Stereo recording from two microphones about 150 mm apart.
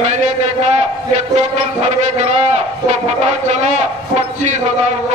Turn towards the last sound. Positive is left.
turn(degrees=-50)  # may be behind; listen again after turning